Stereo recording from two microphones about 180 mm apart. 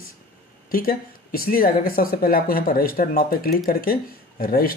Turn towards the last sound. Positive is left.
turn(degrees=55)  # may be behind; listen again after turning